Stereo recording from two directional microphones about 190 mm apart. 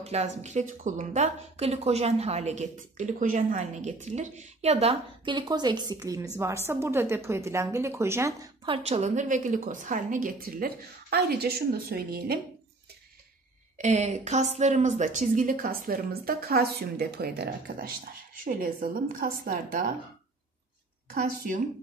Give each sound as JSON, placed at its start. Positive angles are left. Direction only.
{"t": 0.0, "sound": "a woman's voice", "side_deg": -35}
{"t": 8.6, "sound": "a woman's voice", "side_deg": -30}
{"t": 13.7, "sound": "a woman's voice", "side_deg": -35}
{"t": 21.1, "sound": "a woman's voice", "side_deg": -50}